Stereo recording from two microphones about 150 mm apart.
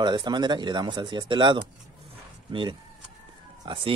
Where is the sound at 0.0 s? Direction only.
30° right (ahead or behind).